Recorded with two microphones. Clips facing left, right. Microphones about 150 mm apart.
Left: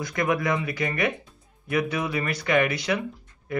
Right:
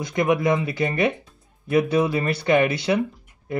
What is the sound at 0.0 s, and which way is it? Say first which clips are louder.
Speech: right 4 dB; 20° right (ahead or behind).